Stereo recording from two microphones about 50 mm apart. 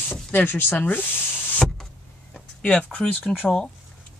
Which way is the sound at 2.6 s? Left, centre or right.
Left.